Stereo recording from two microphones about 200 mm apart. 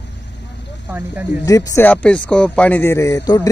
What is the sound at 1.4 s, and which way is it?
Speech, 15° left (ahead or behind).